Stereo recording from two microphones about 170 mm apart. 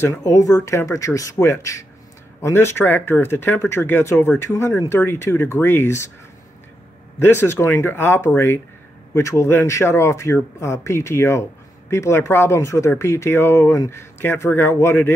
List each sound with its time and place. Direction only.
0.0 s speech: 20° left (ahead or behind)
7.2 s speech: 15° left (ahead or behind)